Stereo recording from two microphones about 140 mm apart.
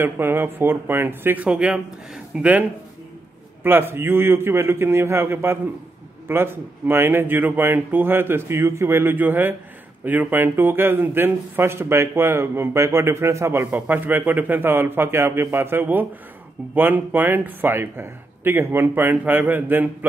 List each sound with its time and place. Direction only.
0.0 s a man's voice: 15° right (ahead or behind)
3.6 s a man's voice: 15° right (ahead or behind)